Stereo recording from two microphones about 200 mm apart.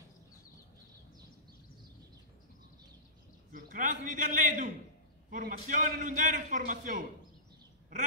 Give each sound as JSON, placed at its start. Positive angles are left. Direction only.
{"t": 3.5, "sound": "a man's voice", "side_deg": -40}